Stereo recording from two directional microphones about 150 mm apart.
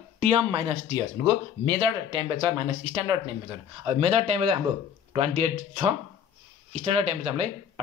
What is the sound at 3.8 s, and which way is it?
Speech, 40° right (ahead or behind).